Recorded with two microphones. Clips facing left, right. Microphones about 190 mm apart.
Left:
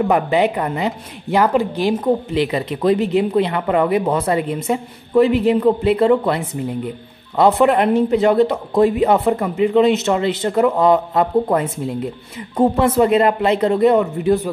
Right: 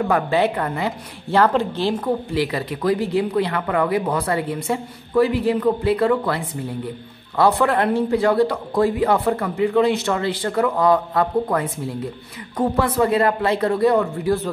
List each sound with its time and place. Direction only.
0.1 s a woman's voice: 15° left (ahead or behind)